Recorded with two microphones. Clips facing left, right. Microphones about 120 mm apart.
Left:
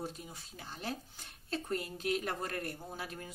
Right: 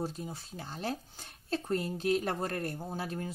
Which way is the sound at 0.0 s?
35° right (ahead or behind).